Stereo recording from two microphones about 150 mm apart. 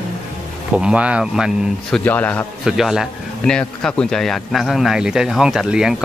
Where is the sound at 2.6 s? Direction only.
5° right (ahead or behind).